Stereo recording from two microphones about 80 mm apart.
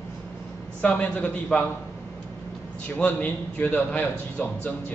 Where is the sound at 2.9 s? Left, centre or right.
Centre.